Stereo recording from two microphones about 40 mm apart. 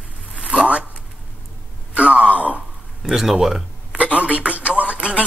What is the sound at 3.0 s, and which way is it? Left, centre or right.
Speech, centre.